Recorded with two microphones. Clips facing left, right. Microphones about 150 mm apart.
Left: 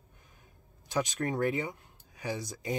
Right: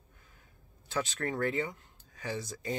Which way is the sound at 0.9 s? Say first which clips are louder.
Left 3 dB; 15° left (ahead or behind).